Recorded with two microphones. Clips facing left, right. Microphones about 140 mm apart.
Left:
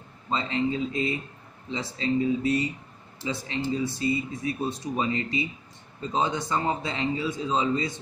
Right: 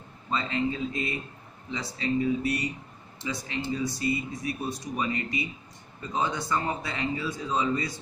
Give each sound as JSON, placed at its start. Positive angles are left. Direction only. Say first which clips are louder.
{"t": 0.3, "sound": "speech", "louder": "left 2 dB", "side_deg": 25}